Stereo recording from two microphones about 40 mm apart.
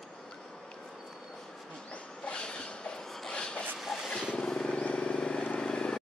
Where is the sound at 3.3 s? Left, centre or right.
Left.